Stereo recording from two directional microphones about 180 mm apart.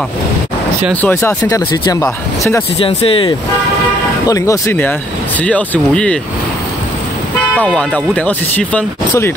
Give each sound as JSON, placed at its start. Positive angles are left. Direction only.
{"t": 1.0, "sound": "speech", "side_deg": 10}
{"t": 2.8, "sound": "speech", "side_deg": 30}
{"t": 4.3, "sound": "speech", "side_deg": 15}
{"t": 7.5, "sound": "speech", "side_deg": 5}